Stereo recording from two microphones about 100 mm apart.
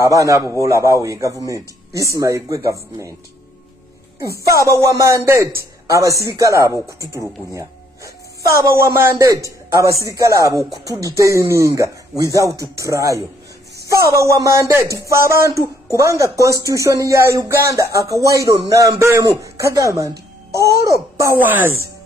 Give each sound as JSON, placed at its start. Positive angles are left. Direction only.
{"t": 0.0, "sound": "speech", "side_deg": -35}
{"t": 4.6, "sound": "speech", "side_deg": -30}
{"t": 8.5, "sound": "speech", "side_deg": -30}
{"t": 21.4, "sound": "speech", "side_deg": -20}